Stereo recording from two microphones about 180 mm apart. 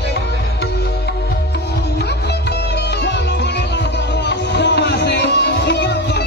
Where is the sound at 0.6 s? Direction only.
65° left (ahead or behind).